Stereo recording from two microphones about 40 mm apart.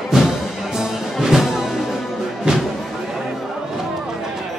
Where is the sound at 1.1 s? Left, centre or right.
Centre.